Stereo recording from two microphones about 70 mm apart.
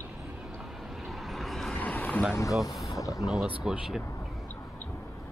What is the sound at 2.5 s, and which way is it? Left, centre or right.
Speech, centre.